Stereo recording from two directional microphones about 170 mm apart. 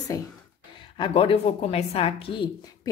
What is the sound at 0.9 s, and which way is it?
A woman's voice, 30° left (ahead or behind).